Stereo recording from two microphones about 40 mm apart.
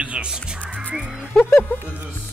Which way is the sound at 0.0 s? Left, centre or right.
Right.